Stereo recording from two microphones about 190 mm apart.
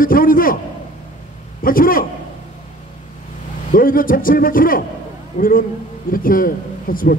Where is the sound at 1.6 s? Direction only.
45° left (ahead or behind).